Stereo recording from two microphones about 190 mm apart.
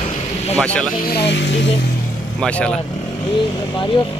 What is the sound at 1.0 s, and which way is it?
Speech, 60° left (ahead or behind).